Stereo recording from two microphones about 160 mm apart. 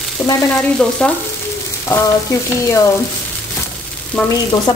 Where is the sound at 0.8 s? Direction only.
5° left (ahead or behind).